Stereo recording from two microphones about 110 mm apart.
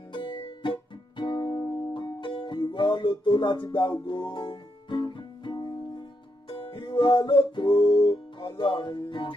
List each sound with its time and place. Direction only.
0.1 s music: 45° left (ahead or behind)